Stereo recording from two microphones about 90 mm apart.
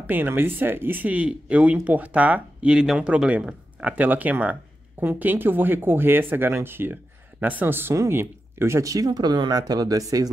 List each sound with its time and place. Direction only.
0.0 s speech: 20° right (ahead or behind); by 10.3 s 40° right (ahead or behind)